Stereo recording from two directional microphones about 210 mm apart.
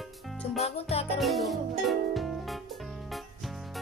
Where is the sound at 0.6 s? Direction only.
30° left (ahead or behind).